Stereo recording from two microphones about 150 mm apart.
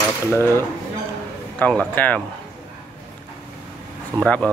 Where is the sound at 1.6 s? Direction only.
10° left (ahead or behind).